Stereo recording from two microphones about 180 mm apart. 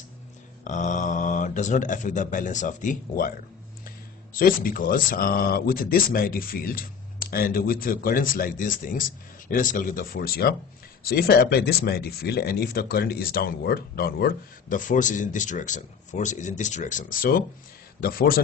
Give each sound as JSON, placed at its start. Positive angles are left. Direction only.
{"t": 0.7, "sound": "speech", "side_deg": 45}